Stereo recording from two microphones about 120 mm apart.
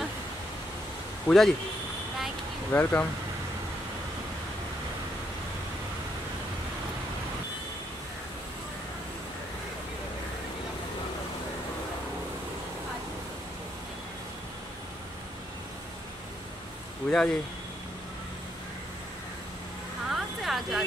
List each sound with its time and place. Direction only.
1.2 s speech: centre (ahead or behind)
2.7 s speech: 15° left (ahead or behind)
17.1 s speech: 5° left (ahead or behind)
20.1 s a sound: centre (ahead or behind)